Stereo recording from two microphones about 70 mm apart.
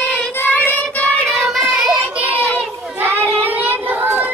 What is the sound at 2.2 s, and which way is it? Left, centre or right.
Children playing, right.